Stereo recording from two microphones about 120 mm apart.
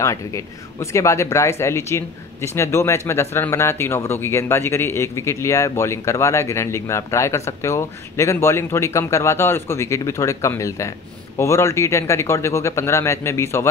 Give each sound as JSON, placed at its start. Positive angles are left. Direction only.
{"t": 0.0, "sound": "speech", "side_deg": 25}